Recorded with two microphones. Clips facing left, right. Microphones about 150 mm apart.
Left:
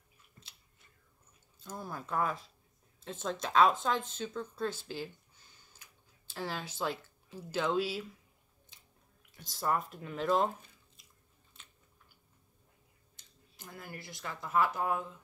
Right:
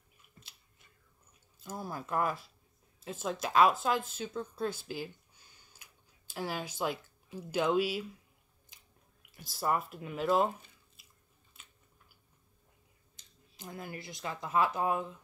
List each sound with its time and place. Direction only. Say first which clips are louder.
1.6 s speech: right 2 dB; 10° right (ahead or behind)
9.3 s speech: right 1 dB; 10° right (ahead or behind)
13.1 s speech: even; 20° right (ahead or behind)